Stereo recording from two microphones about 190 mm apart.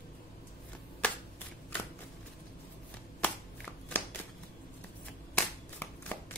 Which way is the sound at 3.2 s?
10° left (ahead or behind).